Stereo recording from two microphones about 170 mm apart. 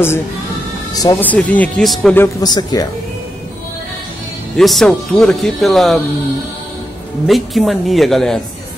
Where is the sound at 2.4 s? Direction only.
20° left (ahead or behind).